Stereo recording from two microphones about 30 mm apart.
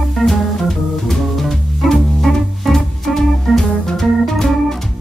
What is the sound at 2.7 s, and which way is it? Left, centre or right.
Organ, centre.